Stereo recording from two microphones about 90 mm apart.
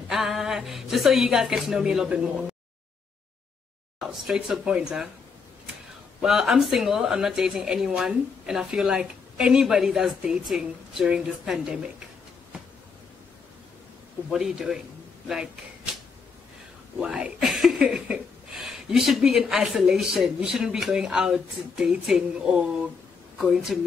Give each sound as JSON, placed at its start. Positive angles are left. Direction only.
{"t": 0.1, "sound": "speech", "side_deg": -5}
{"t": 4.0, "sound": "speech", "side_deg": -5}
{"t": 6.2, "sound": "speech", "side_deg": -5}
{"t": 14.3, "sound": "speech", "side_deg": -5}
{"t": 17.0, "sound": "speech", "side_deg": -10}